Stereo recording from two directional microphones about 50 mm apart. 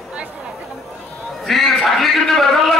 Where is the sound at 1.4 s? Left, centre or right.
Centre.